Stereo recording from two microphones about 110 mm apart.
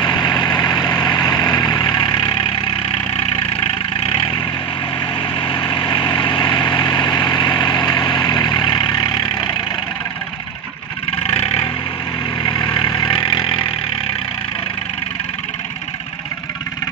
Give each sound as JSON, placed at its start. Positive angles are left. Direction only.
{"t": 0.0, "sound": "vehicle", "side_deg": 40}
{"t": 3.5, "sound": "vehicle", "side_deg": 60}
{"t": 5.5, "sound": "vehicle", "side_deg": 45}
{"t": 11.2, "sound": "vehicle", "side_deg": 60}
{"t": 12.4, "sound": "vehicle", "side_deg": 40}